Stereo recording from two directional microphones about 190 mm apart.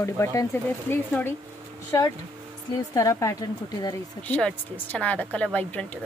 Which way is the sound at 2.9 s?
15° left (ahead or behind).